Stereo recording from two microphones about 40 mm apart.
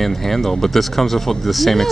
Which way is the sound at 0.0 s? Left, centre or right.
Centre.